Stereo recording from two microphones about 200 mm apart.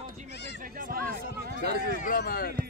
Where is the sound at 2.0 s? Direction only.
50° left (ahead or behind).